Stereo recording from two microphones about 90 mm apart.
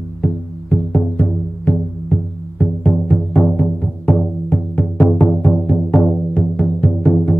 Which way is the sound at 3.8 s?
15° left (ahead or behind).